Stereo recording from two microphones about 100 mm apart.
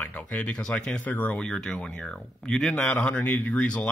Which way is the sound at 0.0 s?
15° left (ahead or behind).